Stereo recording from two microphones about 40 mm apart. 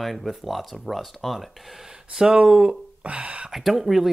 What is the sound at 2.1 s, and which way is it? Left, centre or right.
Speech, centre.